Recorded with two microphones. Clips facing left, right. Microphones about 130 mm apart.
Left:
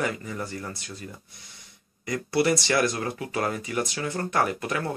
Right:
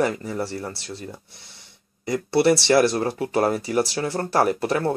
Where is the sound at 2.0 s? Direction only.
30° right (ahead or behind).